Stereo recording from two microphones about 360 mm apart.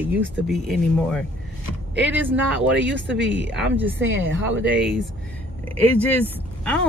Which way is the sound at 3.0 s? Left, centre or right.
Right.